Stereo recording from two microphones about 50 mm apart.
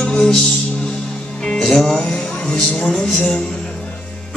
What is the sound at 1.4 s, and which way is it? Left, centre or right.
Music, centre.